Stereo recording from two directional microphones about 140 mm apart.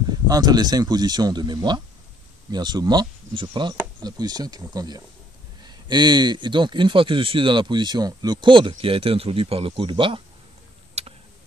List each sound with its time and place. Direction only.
0.1 s speech: 30° right (ahead or behind)
11.0 s tick: 50° right (ahead or behind)